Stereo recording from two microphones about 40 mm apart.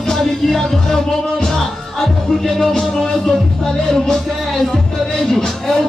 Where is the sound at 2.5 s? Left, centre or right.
Centre.